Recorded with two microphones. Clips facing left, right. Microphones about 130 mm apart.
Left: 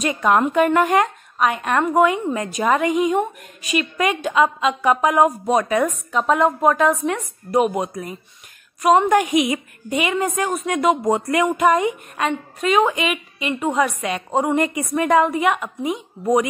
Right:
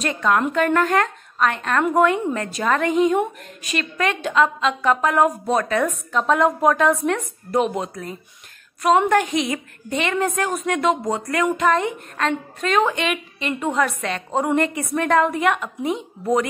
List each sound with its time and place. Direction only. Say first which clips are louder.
0.0 s a woman's voice: left 2 dB; 10° left (ahead or behind)
11.1 s speech: left 4 dB; 20° left (ahead or behind)
11.4 s a woman's voice: left 1 dB; 10° left (ahead or behind)